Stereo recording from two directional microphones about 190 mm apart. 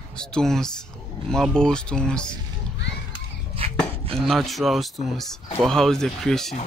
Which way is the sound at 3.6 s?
30° right (ahead or behind).